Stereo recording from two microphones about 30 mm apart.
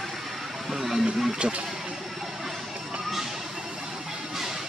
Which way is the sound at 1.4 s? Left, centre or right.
Right.